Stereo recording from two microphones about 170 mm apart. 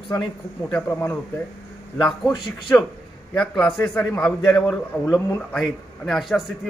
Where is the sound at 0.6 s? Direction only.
15° left (ahead or behind).